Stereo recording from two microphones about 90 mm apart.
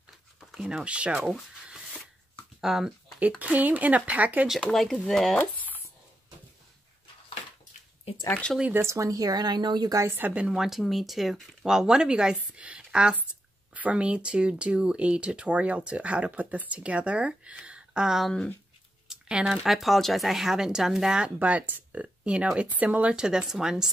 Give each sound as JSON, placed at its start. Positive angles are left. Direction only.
{"t": 0.6, "sound": "speech", "side_deg": -10}
{"t": 2.6, "sound": "speech", "side_deg": -5}
{"t": 3.2, "sound": "speech", "side_deg": -15}
{"t": 4.6, "sound": "speech", "side_deg": 5}
{"t": 5.4, "sound": "a sound", "side_deg": 20}
{"t": 8.3, "sound": "speech", "side_deg": 10}
{"t": 8.7, "sound": "speech", "side_deg": -35}
{"t": 10.0, "sound": "speech", "side_deg": -25}